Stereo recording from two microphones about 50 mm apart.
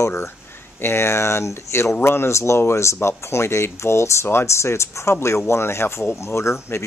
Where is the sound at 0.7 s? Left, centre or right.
Left.